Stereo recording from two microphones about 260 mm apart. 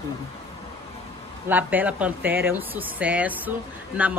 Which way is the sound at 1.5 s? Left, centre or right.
Centre.